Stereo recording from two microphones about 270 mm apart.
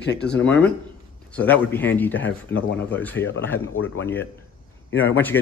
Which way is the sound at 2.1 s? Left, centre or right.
Left.